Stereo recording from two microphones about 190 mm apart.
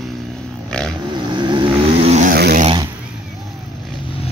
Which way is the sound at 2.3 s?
55° right (ahead or behind).